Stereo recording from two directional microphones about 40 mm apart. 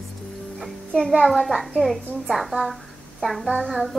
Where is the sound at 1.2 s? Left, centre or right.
Centre.